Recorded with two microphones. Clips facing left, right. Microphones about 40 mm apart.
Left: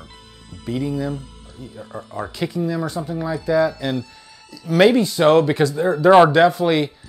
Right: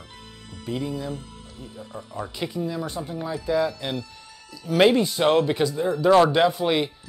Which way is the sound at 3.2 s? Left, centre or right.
Centre.